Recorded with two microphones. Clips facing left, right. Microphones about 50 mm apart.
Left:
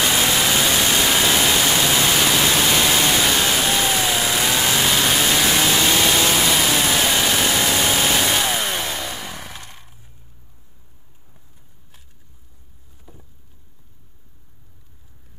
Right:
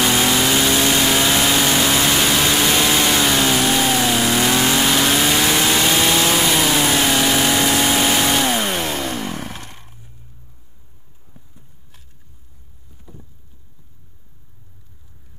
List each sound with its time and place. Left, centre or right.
0.0 s vehicle: centre
7.6 s a sound: centre
13.0 s vehicle: centre